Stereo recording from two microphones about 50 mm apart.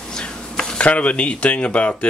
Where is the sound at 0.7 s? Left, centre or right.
Left.